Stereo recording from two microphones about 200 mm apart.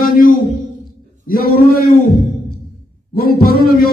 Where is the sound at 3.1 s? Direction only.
50° left (ahead or behind).